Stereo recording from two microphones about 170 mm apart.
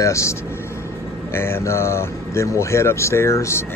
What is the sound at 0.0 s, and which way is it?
Speech, 15° left (ahead or behind).